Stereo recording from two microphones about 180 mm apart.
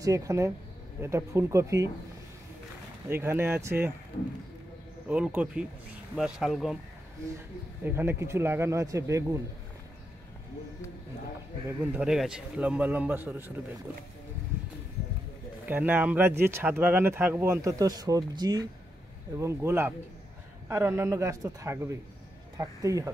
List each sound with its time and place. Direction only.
0.0 s speech: 15° right (ahead or behind)
3.1 s speech: 10° right (ahead or behind)
5.0 s speech: 5° right (ahead or behind)
7.8 s speech: 15° right (ahead or behind)
11.8 s speech: 5° right (ahead or behind)
15.6 s speech: 10° right (ahead or behind)